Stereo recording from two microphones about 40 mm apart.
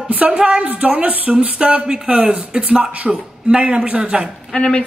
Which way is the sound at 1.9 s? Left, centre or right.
Right.